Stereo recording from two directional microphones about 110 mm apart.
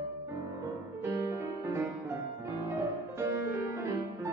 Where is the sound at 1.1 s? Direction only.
25° right (ahead or behind).